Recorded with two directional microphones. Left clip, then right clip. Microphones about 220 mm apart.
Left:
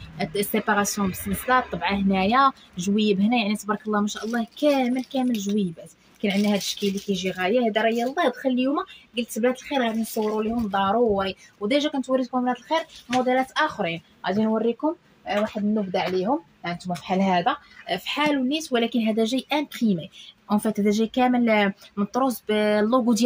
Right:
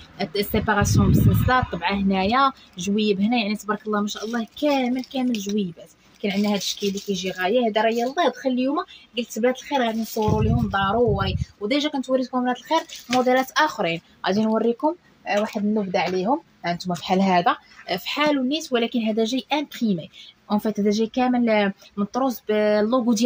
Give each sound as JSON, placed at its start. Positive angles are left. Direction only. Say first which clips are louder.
{"t": 0.2, "sound": "a woman's voice", "louder": "right 1 dB", "side_deg": 0}
{"t": 13.2, "sound": "a woman's voice", "louder": "right 3 dB", "side_deg": -25}